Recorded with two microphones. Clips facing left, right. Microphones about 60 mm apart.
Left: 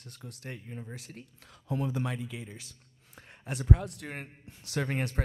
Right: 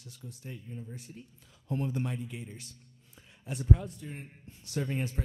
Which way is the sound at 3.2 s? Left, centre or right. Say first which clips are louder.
Left 2 dB; left.